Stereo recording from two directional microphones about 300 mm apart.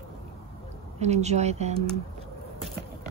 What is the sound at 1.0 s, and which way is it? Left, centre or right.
Speech, right.